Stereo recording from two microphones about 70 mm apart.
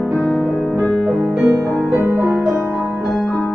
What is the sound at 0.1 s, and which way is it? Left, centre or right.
Music, centre.